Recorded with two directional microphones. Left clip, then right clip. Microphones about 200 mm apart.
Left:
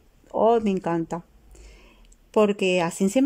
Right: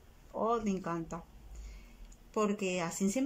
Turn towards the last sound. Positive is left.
turn(degrees=45)  # may be behind; listen again after turning